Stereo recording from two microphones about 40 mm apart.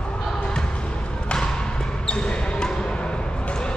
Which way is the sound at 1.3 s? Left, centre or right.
Centre.